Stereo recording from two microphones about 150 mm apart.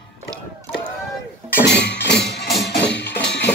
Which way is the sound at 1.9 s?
90° left.